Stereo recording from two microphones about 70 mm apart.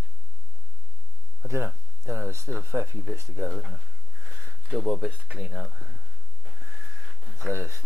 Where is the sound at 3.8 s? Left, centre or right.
Centre.